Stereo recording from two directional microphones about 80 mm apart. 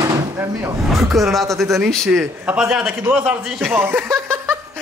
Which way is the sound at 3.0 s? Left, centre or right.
Right.